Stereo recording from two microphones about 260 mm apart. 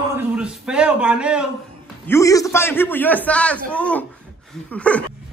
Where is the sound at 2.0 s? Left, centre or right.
Centre.